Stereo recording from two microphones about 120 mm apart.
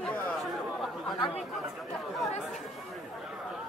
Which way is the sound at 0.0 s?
5° left (ahead or behind).